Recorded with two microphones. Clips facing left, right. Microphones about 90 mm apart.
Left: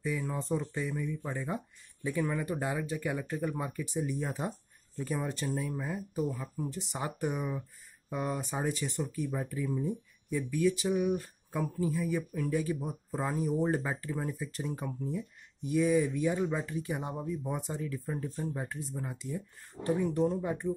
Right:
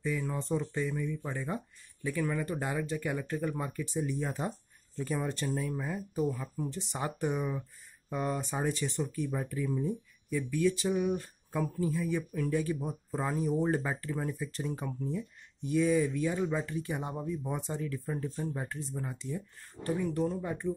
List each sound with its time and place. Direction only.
0.0 s speech: 10° left (ahead or behind)
2.0 s speech: 20° left (ahead or behind)
19.8 s speech: 20° left (ahead or behind)